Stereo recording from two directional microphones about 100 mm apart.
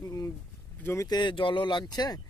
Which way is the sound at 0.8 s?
25° left (ahead or behind).